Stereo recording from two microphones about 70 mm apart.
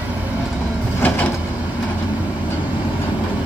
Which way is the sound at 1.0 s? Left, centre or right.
Left.